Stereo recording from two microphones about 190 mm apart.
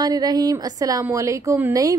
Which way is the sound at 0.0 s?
20° right (ahead or behind).